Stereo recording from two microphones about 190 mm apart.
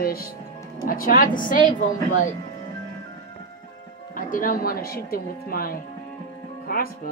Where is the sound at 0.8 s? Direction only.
50° left (ahead or behind).